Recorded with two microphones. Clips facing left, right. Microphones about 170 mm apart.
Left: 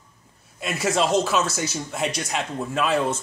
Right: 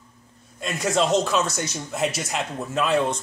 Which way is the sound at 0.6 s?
5° left (ahead or behind).